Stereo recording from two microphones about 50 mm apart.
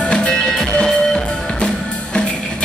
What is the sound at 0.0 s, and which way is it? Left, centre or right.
Music, centre.